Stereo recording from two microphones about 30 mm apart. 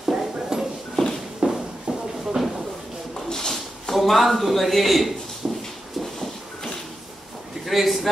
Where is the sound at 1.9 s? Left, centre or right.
Right.